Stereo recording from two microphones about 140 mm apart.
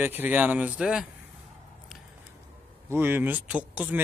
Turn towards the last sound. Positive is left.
turn(degrees=-10)  # may be behind; listen again after turning